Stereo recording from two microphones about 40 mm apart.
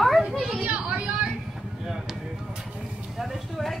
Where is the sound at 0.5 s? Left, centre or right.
Right.